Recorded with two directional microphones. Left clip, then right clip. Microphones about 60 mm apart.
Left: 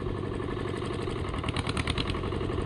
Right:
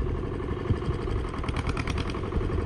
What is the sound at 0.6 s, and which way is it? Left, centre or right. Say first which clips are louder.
Vehicle: right 1 dB; centre.